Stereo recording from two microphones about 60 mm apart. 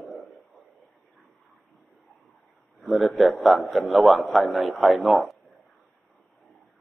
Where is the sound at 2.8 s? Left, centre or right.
Centre.